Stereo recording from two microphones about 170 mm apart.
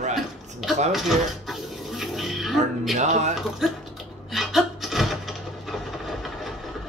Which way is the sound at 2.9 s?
45° right (ahead or behind).